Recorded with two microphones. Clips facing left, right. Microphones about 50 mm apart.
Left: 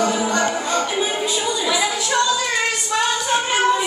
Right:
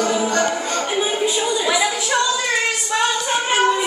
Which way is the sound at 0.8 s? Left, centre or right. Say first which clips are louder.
Right 1 dB; centre.